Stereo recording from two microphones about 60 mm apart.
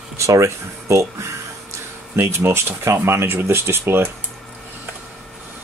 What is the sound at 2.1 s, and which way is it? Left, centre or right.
Speech, right.